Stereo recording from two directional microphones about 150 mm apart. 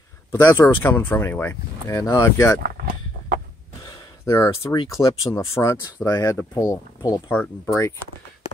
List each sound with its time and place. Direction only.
0.3 s speech: 15° left (ahead or behind)
2.6 s a sound: 75° right (ahead or behind)
4.3 s speech: 20° left (ahead or behind)
7.2 s speech: 10° left (ahead or behind)